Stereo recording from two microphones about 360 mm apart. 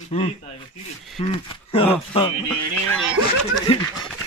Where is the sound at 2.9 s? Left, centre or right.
Centre.